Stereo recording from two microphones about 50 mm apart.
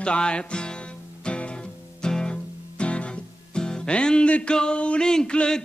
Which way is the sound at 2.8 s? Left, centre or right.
Left.